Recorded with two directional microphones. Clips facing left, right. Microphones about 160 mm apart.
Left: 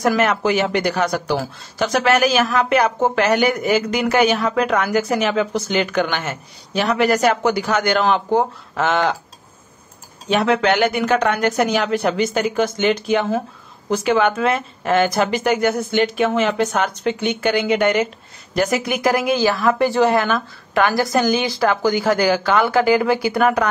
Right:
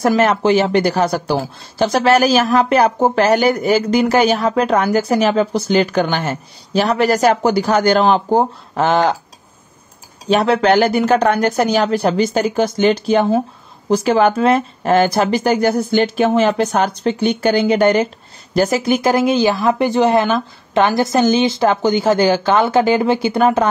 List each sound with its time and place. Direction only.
0.0 s speech: 30° right (ahead or behind)
10.2 s speech: 35° right (ahead or behind)